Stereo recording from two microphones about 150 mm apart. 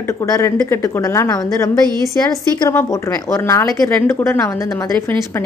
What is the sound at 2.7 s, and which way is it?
A woman's voice, 15° left (ahead or behind).